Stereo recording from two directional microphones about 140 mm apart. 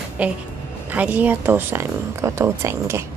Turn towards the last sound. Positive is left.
turn(degrees=-20)  # may be behind; listen again after turning